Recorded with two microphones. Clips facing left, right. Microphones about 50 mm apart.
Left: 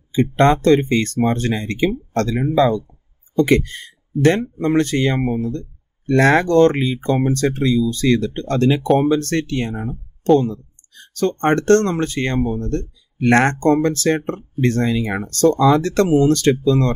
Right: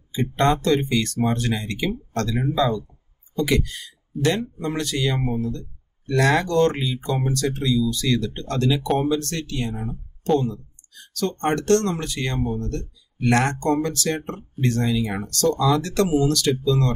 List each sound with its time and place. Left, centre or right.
0.2 s speech: left